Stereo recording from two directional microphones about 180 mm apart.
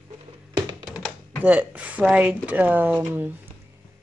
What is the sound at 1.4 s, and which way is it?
Speech, 10° right (ahead or behind).